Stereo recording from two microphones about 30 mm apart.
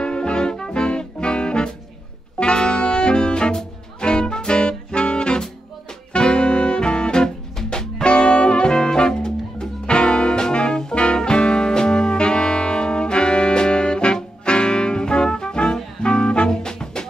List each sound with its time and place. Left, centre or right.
0.0 s music: left
2.3 s brass instrument: left
4.0 s music: left